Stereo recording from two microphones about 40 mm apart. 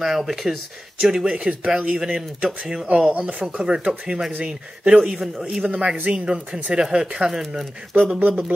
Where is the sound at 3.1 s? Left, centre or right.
Right.